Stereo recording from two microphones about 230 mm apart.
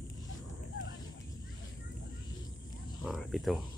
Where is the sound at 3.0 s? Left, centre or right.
Centre.